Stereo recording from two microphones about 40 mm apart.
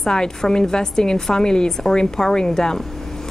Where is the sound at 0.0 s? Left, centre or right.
Centre.